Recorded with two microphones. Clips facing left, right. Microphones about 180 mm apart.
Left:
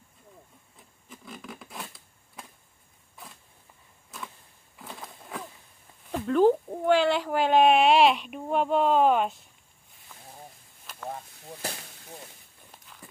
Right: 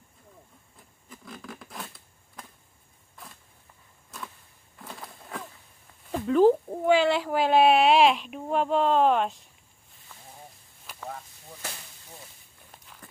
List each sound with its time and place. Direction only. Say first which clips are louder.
0.7 s a sound: even; centre (ahead or behind)
4.7 s walk: even; centre (ahead or behind)
6.0 s speech: right 1 dB; centre (ahead or behind)
11.1 s chop: left 3 dB; 30° left (ahead or behind)
12.7 s walk: even; centre (ahead or behind)